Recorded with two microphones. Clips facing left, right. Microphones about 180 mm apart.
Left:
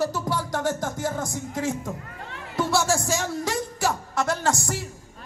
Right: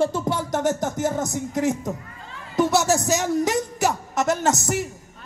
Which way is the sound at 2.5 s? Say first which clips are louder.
Right 4 dB; 20° right (ahead or behind).